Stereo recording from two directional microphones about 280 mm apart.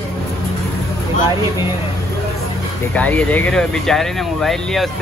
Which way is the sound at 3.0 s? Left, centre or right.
Centre.